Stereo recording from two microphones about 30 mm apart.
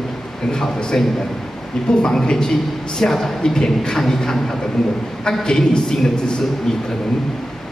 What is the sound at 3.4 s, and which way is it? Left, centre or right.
Speech, left.